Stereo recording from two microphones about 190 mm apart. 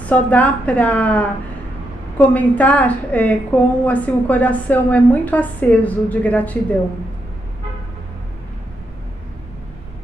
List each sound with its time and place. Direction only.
0.0 s a woman's voice: 10° left (ahead or behind)